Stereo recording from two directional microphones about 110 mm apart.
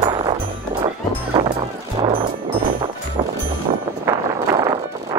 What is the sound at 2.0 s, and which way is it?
Music, 55° right (ahead or behind).